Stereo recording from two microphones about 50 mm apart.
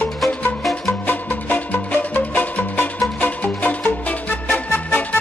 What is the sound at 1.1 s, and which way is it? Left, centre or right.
Music, left.